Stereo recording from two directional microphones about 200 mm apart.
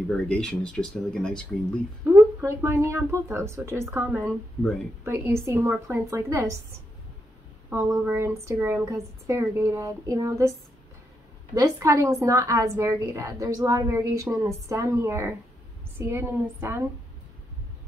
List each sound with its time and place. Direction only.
0.1 s speech: 5° left (ahead or behind)
2.0 s speech: 10° right (ahead or behind)
7.7 s speech: 10° right (ahead or behind)
11.5 s speech: 15° right (ahead or behind)